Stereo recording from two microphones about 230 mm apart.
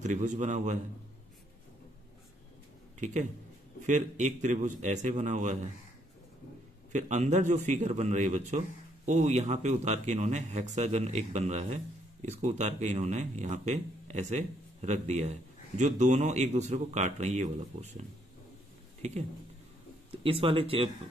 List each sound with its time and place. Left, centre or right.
0.0 s a man's voice: right
3.0 s a man's voice: right
6.9 s a man's voice: right
19.0 s a man's voice: right